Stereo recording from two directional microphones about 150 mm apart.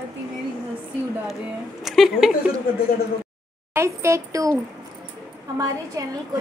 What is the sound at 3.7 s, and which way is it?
Speech, 20° right (ahead or behind).